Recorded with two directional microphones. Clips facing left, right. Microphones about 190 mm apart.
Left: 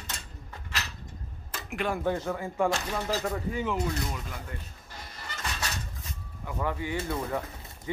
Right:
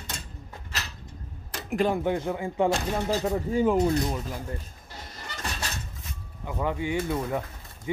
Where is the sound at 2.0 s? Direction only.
15° right (ahead or behind).